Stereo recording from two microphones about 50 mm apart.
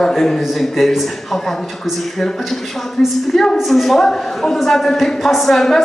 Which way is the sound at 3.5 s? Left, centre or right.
Centre.